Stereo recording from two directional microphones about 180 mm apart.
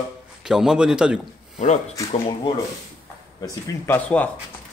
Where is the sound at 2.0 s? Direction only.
20° left (ahead or behind).